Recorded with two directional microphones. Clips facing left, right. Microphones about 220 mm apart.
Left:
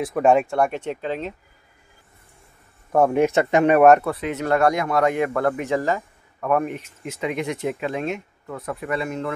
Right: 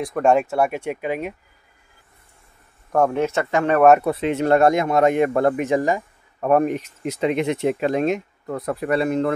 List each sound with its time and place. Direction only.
0.0 s speech: 5° left (ahead or behind)
2.9 s speech: 10° left (ahead or behind)
4.0 s speech: 25° right (ahead or behind)
7.1 s speech: 30° right (ahead or behind)
7.9 s speech: 40° right (ahead or behind)